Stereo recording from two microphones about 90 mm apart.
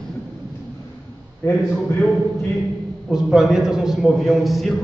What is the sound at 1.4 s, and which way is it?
Speech, 25° left (ahead or behind).